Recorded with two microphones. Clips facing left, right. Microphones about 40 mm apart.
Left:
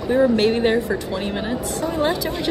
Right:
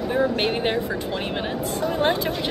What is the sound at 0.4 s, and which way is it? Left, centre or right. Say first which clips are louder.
A woman's voice: left 5 dB; centre.